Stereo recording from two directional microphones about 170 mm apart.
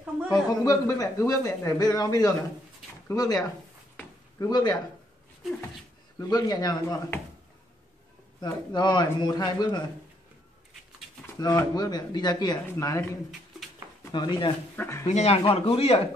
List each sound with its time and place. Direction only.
0.3 s speech: 20° left (ahead or behind)
3.9 s a sound: 20° left (ahead or behind)
6.1 s speech: 20° left (ahead or behind)
8.4 s speech: 25° left (ahead or behind)
11.3 s speech: 20° left (ahead or behind)
14.1 s speech: 25° left (ahead or behind)
14.8 s speech: 15° left (ahead or behind)
15.0 s speech: 40° left (ahead or behind)